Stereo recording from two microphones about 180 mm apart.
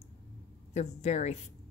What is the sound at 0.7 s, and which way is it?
Speech, 40° left (ahead or behind).